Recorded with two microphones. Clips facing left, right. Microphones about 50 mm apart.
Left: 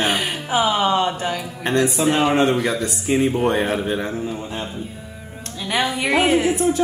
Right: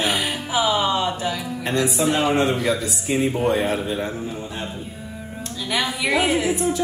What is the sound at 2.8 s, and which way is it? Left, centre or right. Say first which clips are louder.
A man's voice: left 3 dB; left.